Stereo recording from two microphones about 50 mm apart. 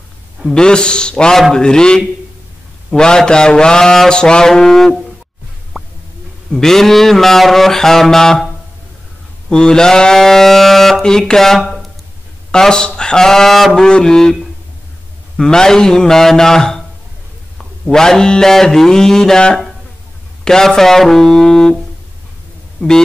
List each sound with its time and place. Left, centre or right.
0.6 s speech: centre
5.7 s a sound: centre
6.5 s speech: centre
9.5 s speech: centre
15.3 s speech: centre
17.8 s speech: centre
22.8 s speech: centre